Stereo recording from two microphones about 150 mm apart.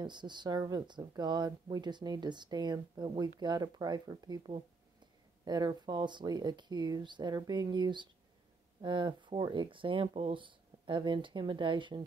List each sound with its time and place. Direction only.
0.0 s speech: 30° right (ahead or behind)